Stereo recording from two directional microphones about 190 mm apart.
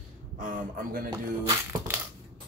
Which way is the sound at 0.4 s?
45° right (ahead or behind).